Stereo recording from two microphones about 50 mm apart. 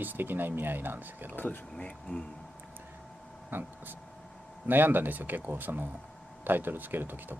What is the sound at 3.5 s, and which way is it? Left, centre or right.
Speech, right.